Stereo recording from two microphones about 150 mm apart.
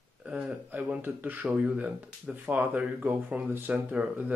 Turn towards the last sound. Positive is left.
turn(degrees=-10)  # may be behind; listen again after turning